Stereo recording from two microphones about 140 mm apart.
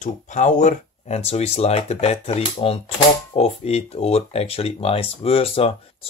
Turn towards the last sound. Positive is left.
turn(degrees=45)  # may be behind; listen again after turning